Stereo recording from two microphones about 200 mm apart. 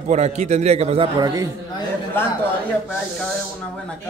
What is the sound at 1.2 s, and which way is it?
Speech, 15° right (ahead or behind).